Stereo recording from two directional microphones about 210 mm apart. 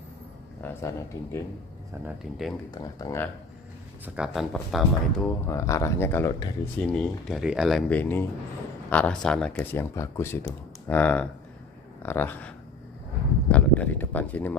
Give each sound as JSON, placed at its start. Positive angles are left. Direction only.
{"t": 0.6, "sound": "speech", "side_deg": 15}
{"t": 2.0, "sound": "speech", "side_deg": 0}
{"t": 2.7, "sound": "speech", "side_deg": 15}
{"t": 4.0, "sound": "speech", "side_deg": -5}
{"t": 5.5, "sound": "speech", "side_deg": 15}